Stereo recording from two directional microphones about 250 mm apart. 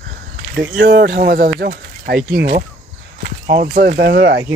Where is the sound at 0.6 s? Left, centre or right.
Right.